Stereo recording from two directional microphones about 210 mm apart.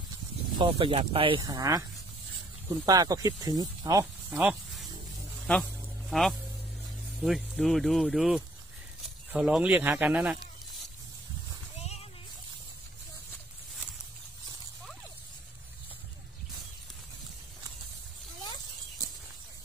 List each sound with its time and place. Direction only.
0.6 s speech: 25° right (ahead or behind); by 4.8 s 5° right (ahead or behind)
5.5 s a sound: centre (ahead or behind)
7.2 s speech: centre (ahead or behind)